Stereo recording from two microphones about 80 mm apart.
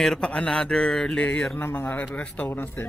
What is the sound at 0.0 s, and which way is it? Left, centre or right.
Mantra, centre.